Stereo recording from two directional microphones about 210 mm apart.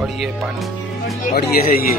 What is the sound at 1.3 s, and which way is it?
Speech, 45° left (ahead or behind).